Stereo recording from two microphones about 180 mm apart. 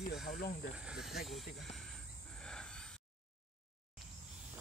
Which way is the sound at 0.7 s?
5° right (ahead or behind).